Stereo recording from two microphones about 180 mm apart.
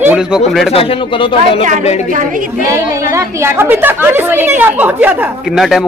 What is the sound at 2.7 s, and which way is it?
A woman's voice, 15° right (ahead or behind).